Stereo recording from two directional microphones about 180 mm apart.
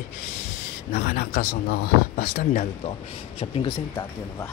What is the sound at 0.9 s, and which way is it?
Speech, 50° left (ahead or behind).